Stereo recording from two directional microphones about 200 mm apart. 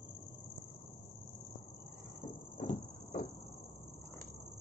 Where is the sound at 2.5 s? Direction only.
35° left (ahead or behind).